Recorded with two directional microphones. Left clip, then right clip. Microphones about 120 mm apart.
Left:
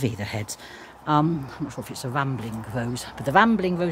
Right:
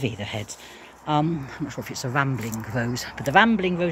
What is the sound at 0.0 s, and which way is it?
Speech, 50° left (ahead or behind).